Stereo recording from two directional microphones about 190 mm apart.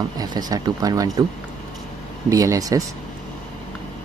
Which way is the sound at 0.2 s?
20° right (ahead or behind).